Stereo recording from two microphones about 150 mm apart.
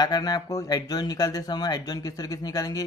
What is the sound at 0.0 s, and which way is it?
Speech, 25° left (ahead or behind).